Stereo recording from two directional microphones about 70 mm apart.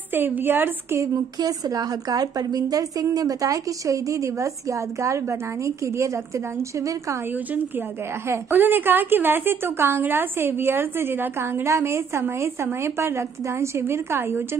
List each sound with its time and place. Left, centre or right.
0.1 s a woman's voice: right
1.4 s a woman's voice: right
8.3 s a woman's voice: right